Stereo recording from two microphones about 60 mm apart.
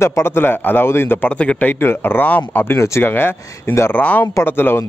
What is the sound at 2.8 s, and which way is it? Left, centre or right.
Speech, left.